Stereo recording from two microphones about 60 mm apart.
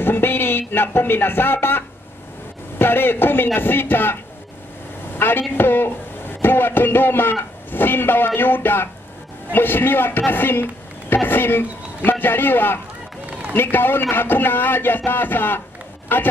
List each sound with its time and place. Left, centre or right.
0.0 s a man's voice: left
5.1 s a sound: left
5.6 s a man's voice: left